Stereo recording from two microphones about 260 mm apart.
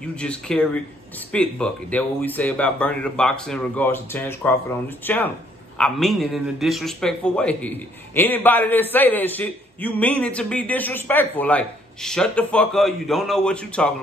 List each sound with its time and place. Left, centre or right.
0.1 s a man's voice: centre